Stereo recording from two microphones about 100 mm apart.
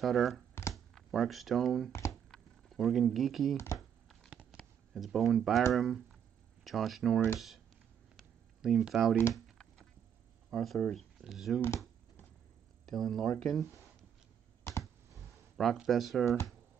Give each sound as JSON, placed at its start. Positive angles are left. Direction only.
{"t": 0.0, "sound": "speech", "side_deg": 0}
{"t": 1.9, "sound": "a sound", "side_deg": 25}
{"t": 2.3, "sound": "speech", "side_deg": 0}
{"t": 3.5, "sound": "speech", "side_deg": 30}
{"t": 4.3, "sound": "a sound", "side_deg": -10}
{"t": 4.6, "sound": "speech", "side_deg": 0}
{"t": 8.2, "sound": "a sound", "side_deg": 0}
{"t": 9.3, "sound": "typing", "side_deg": 5}
{"t": 10.5, "sound": "speech", "side_deg": 5}
{"t": 12.8, "sound": "speech", "side_deg": 5}
{"t": 15.5, "sound": "speech", "side_deg": 0}